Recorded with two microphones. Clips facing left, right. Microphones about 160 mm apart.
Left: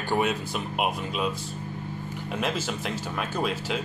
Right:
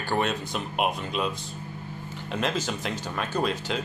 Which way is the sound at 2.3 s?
5° left (ahead or behind).